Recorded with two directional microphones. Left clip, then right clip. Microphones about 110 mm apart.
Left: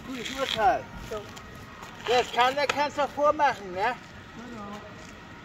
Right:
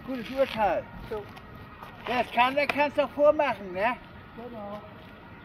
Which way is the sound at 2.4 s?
35° right (ahead or behind).